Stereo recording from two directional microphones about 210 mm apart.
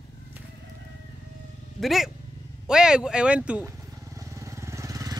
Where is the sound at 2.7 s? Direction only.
5° right (ahead or behind).